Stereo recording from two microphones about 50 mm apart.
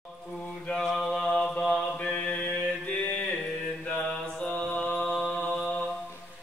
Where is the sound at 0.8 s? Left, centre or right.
Centre.